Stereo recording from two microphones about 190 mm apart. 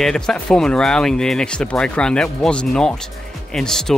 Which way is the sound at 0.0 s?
5° left (ahead or behind).